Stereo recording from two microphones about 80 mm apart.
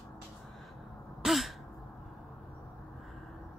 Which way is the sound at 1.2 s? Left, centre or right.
Centre.